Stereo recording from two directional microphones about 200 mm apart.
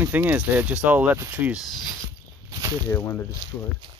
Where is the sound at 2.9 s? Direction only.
10° left (ahead or behind).